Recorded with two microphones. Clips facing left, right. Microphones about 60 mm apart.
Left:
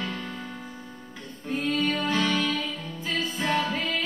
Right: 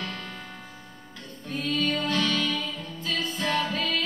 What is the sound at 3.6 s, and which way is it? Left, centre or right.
Music, centre.